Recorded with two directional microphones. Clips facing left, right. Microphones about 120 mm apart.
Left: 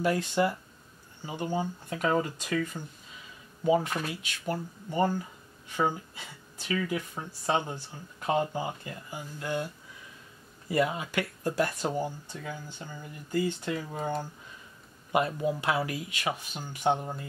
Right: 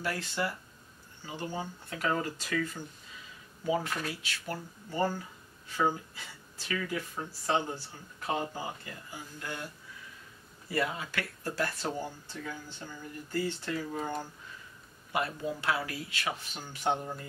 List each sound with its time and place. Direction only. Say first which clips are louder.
0.0 s speech: left 7 dB; 20° left (ahead or behind)
6.7 s speech: left 4 dB; 15° left (ahead or behind)
9.4 s speech: left 8 dB; 20° left (ahead or behind)
10.7 s speech: left 5 dB; 20° left (ahead or behind)
15.1 s speech: left 6 dB; 20° left (ahead or behind)